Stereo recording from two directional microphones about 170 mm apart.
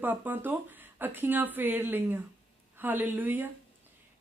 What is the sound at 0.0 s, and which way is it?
A man's voice, 10° right (ahead or behind).